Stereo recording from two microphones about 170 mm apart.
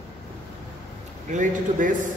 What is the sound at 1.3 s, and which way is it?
Speech, 50° right (ahead or behind).